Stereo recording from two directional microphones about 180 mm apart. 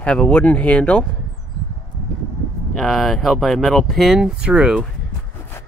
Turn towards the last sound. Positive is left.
turn(degrees=-5)  # may be behind; listen again after turning